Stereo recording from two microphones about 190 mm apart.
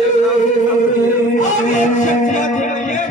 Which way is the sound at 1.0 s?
40° left (ahead or behind).